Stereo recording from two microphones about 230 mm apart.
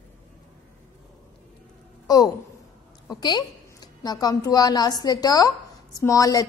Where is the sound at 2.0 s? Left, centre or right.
Centre.